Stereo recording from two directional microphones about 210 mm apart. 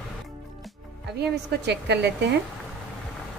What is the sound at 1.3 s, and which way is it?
A woman's voice, 55° right (ahead or behind).